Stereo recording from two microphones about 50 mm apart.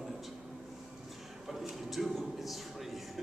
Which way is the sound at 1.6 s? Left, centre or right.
Centre.